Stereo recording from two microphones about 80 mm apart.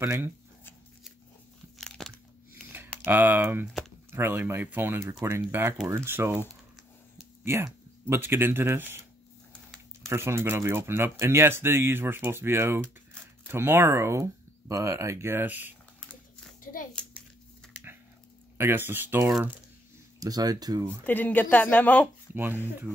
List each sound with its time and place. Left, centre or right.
0.0 s speech: right
1.8 s crunch: centre
2.5 s typing: right
3.1 s speech: right
8.1 s speech: right
10.0 s speech: right
15.4 s speech: right
16.0 s a sound: centre
18.6 s speech: right
20.2 s speech: right
21.0 s speech: centre
22.3 s speech: right
22.9 s speech: left